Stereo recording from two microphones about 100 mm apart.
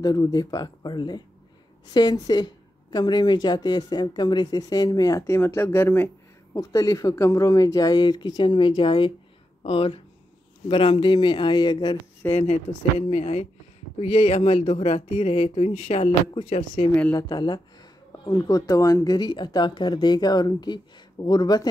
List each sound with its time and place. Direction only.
0.0 s speech: 40° left (ahead or behind)
5.3 s speech: 25° left (ahead or behind)
6.5 s speech: 35° left (ahead or behind); by 9.1 s 55° left (ahead or behind)
9.6 s speech: 75° left (ahead or behind)
10.7 s speech: 65° left (ahead or behind)
12.2 s speech: 20° left (ahead or behind)
13.1 s speech: 90° left
17.1 s speech: 45° left (ahead or behind)